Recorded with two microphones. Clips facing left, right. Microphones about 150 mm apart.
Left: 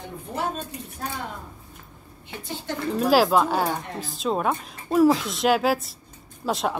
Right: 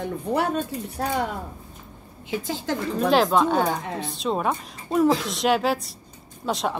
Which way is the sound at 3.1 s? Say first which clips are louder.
Even; 5° left (ahead or behind).